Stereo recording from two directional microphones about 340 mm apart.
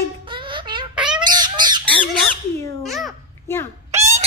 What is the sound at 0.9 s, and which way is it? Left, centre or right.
Squawk, centre.